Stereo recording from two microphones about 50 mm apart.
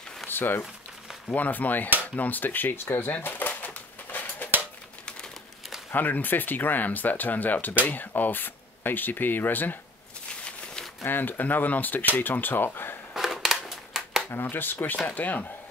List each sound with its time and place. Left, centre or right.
0.3 s speech: left
1.3 s speech: left
2.0 s typewriter: left
5.9 s speech: left
10.4 s a sound: centre
11.1 s speech: left
13.1 s a sound: centre
14.3 s speech: left